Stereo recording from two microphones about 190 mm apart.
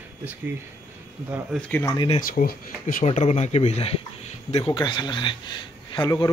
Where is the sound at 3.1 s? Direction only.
35° left (ahead or behind).